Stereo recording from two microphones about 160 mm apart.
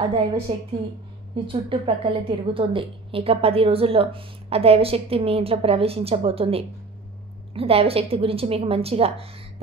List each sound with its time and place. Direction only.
0.5 s a woman's voice: 35° right (ahead or behind)